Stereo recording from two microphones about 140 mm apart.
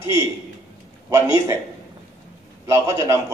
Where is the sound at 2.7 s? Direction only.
20° right (ahead or behind).